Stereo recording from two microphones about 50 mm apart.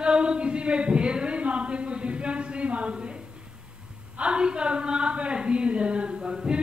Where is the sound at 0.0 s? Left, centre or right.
Centre.